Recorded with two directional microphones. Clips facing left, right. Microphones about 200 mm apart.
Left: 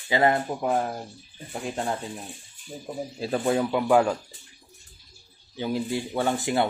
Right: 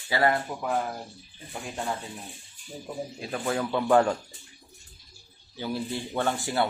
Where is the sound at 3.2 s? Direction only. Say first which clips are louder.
Left 6 dB; 30° left (ahead or behind).